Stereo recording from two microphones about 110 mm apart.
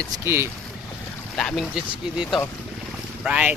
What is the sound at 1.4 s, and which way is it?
Speech, 5° left (ahead or behind).